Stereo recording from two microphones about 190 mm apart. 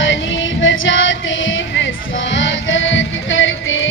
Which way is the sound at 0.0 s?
80° left.